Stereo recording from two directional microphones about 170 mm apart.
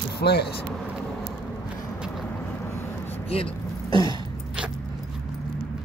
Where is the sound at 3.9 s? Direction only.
25° right (ahead or behind).